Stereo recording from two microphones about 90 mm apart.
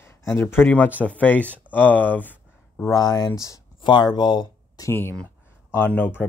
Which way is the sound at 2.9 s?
40° left (ahead or behind).